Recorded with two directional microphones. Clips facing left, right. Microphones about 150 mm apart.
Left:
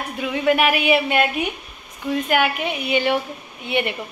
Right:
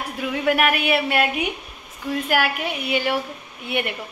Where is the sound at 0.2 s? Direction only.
5° right (ahead or behind).